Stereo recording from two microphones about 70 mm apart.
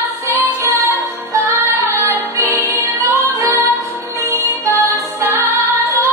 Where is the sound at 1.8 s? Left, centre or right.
Right.